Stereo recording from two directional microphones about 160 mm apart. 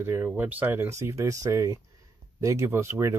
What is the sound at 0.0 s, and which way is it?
Speech, 15° right (ahead or behind).